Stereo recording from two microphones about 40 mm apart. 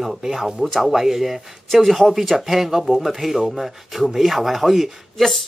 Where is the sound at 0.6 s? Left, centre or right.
Centre.